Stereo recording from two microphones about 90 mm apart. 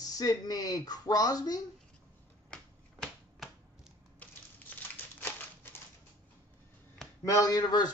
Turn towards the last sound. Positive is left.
turn(degrees=45)  # may be behind; listen again after turning